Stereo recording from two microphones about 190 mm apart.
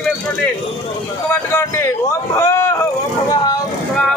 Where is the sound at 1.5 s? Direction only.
15° left (ahead or behind).